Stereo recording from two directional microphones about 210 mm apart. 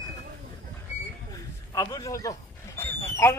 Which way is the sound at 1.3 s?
15° left (ahead or behind).